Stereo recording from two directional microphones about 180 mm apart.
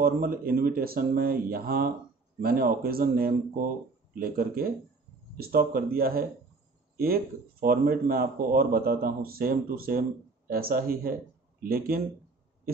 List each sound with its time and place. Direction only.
0.0 s a man's voice: 55° right (ahead or behind)
7.6 s a man's voice: 55° right (ahead or behind)